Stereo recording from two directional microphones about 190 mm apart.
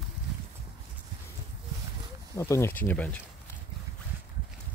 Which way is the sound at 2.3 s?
15° left (ahead or behind).